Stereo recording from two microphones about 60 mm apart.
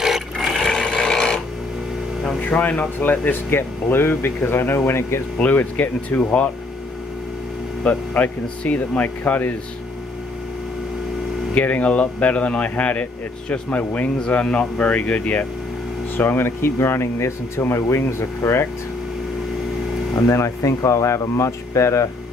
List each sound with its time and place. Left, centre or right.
0.0 s sewing machine: centre
2.4 s speech: left
5.4 s speech: left
7.8 s speech: left
11.5 s speech: left
16.2 s speech: left
20.2 s speech: left